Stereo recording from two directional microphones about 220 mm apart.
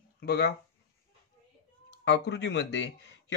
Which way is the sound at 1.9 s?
50° left (ahead or behind).